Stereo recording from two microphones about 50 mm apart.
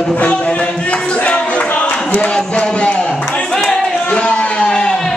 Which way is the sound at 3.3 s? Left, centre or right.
Left.